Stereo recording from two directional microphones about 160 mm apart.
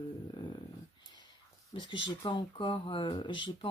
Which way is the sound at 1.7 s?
30° left (ahead or behind).